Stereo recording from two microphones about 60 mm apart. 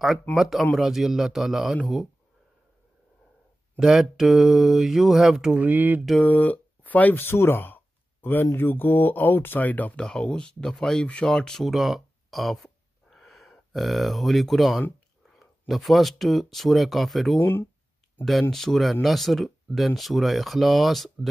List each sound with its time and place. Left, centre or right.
0.4 s mantra: centre
3.8 s mantra: centre
5.6 s speech: right
6.2 s speech: left
9.9 s speech: centre
12.6 s a sound: centre
15.7 s mantra: centre
17.4 s speech: left
18.5 s mantra: centre